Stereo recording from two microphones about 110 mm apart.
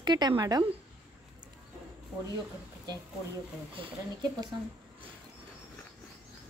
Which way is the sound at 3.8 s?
50° right (ahead or behind).